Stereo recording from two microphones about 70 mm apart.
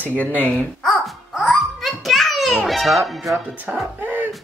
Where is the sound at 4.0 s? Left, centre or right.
Right.